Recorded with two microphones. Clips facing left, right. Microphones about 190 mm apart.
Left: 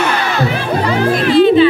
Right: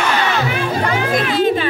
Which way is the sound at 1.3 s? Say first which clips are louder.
Left 9 dB; 45° right (ahead or behind).